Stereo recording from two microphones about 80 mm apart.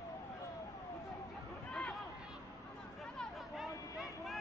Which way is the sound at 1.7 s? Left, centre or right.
Centre.